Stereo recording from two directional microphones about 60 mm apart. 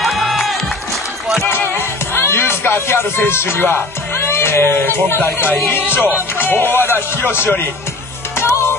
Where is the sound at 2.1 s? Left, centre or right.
Left.